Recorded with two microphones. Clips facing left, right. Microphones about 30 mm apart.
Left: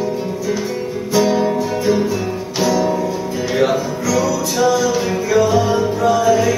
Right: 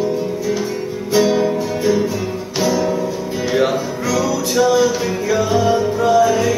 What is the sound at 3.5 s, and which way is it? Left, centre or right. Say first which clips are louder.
Music: left 1 dB; centre.